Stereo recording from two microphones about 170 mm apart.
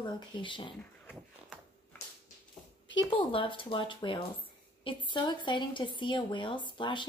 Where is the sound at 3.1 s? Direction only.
30° left (ahead or behind).